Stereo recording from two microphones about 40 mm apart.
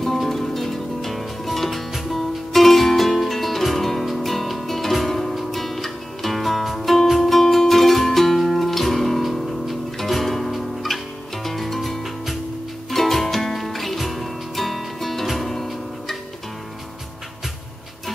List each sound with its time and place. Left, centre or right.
0.0 s music: centre